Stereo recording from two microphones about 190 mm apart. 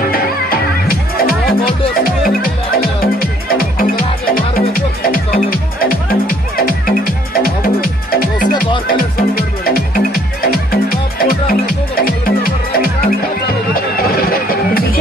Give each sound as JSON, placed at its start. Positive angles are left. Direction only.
{"t": 0.1, "sound": "music", "side_deg": 50}